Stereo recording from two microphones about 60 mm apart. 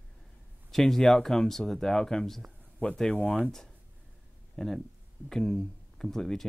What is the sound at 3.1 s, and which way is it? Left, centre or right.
Speech, left.